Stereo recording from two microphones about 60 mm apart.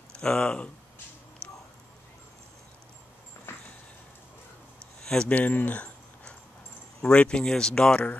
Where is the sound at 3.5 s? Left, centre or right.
Left.